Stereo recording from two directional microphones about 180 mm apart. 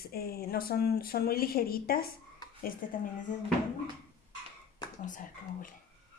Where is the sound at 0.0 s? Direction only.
60° left (ahead or behind).